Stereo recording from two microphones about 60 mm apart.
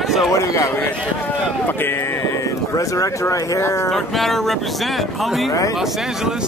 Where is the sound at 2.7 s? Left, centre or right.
Left.